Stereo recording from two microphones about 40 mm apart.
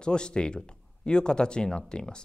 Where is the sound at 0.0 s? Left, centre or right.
Left.